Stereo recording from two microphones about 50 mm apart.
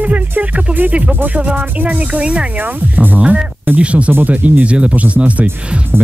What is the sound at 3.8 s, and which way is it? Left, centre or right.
Speech, right.